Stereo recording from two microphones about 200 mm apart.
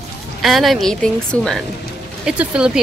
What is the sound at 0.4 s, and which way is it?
Speech, centre (ahead or behind).